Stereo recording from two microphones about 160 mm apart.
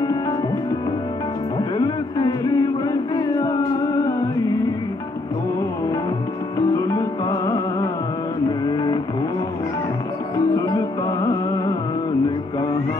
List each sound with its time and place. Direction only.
1.6 s music: 20° left (ahead or behind)
6.7 s music: 20° left (ahead or behind)
8.6 s vehicle: 25° left (ahead or behind)
10.3 s music: 20° left (ahead or behind)